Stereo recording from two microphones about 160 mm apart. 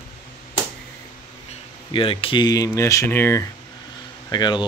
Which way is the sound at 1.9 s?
35° left (ahead or behind).